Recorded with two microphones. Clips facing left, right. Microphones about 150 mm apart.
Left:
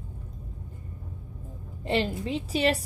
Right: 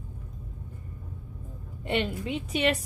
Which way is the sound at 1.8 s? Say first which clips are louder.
Left 2 dB; 30° left (ahead or behind).